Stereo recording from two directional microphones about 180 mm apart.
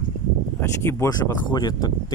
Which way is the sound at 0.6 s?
15° left (ahead or behind).